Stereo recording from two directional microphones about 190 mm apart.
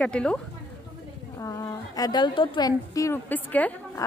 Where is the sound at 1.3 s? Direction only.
15° left (ahead or behind).